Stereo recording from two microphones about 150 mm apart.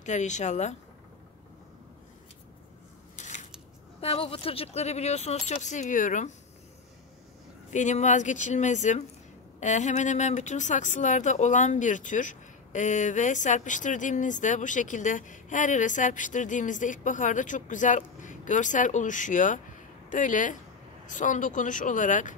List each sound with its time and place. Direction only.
0.0 s speech: 50° left (ahead or behind)
3.2 s scissors: 55° left (ahead or behind)
4.0 s speech: 40° left (ahead or behind); by 6.3 s 55° left (ahead or behind)
7.7 s speech: 55° left (ahead or behind)